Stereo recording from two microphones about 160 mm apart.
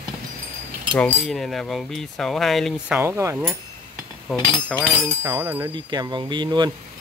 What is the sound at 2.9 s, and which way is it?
Speech, 15° right (ahead or behind).